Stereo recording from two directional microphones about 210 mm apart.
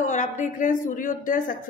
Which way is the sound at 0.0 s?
35° left (ahead or behind).